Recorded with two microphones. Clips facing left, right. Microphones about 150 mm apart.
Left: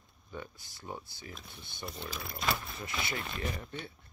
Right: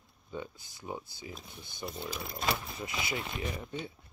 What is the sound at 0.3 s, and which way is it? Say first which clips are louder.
Speech: right 3 dB; 15° right (ahead or behind).